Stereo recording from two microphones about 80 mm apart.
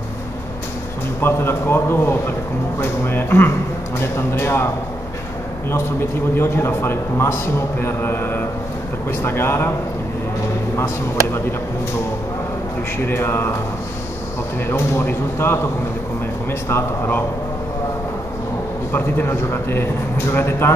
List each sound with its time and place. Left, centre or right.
1.2 s a man's voice: left
5.7 s a man's voice: left
13.0 s a man's voice: left
14.7 s a man's voice: left
18.9 s a man's voice: left